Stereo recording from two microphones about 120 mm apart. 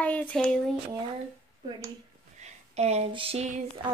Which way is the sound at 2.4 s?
65° right (ahead or behind).